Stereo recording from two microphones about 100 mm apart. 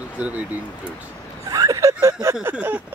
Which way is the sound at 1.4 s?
35° right (ahead or behind).